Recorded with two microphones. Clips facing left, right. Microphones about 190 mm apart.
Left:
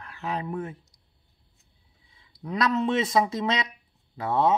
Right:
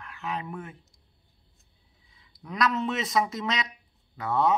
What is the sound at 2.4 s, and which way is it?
Speech, 30° left (ahead or behind).